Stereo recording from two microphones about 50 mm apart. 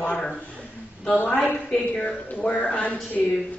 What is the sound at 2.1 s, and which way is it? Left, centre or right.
Speech, left.